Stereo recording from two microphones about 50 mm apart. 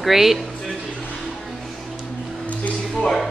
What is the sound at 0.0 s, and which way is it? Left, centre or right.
Speech, centre.